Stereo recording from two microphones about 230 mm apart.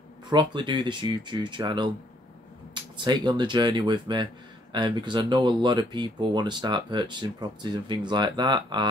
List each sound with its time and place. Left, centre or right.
0.3 s speech: centre